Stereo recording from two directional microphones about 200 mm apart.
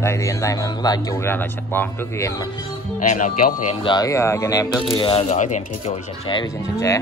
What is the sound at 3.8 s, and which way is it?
Speech, 20° left (ahead or behind).